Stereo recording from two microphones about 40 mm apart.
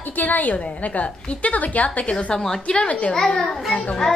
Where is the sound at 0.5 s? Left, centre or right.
Left.